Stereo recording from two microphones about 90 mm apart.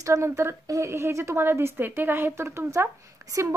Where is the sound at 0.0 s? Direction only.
35° right (ahead or behind).